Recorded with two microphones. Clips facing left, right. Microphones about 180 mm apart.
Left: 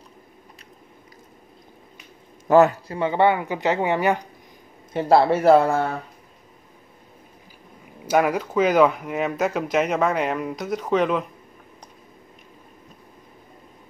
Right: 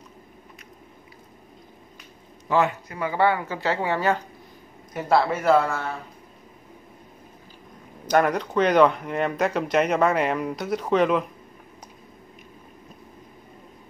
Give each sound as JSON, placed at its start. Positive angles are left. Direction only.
{"t": 2.4, "sound": "speech", "side_deg": 45}
{"t": 4.9, "sound": "speech", "side_deg": 30}
{"t": 8.1, "sound": "speech", "side_deg": 5}